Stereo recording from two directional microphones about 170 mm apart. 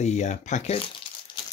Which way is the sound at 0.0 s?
45° left (ahead or behind).